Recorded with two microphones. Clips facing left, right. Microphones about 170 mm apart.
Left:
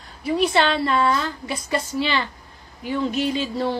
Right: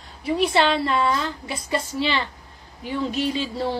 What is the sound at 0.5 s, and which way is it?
Speech, 25° right (ahead or behind).